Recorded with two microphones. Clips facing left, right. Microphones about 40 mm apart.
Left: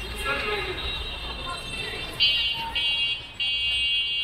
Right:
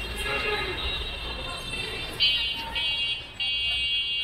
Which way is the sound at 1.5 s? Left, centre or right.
Centre.